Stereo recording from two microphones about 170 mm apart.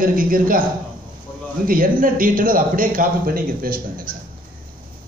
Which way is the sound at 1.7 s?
55° right (ahead or behind).